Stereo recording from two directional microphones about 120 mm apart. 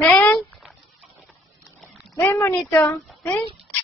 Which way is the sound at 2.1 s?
25° left (ahead or behind).